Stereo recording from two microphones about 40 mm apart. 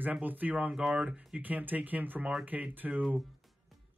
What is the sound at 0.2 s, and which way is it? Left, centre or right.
Speech, right.